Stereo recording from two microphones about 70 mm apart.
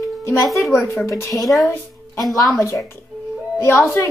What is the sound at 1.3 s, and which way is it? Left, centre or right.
Speech, centre.